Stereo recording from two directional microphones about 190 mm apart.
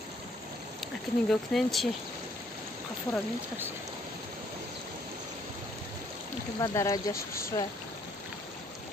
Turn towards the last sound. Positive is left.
turn(degrees=50)  # may be behind; listen again after turning